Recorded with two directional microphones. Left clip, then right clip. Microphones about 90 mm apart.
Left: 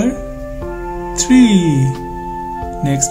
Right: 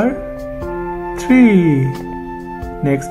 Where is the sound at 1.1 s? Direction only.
35° left (ahead or behind).